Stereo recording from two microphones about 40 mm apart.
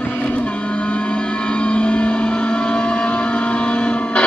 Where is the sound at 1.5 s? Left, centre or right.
Left.